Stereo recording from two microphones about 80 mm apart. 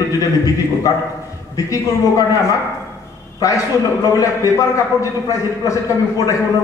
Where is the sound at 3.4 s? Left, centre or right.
Left.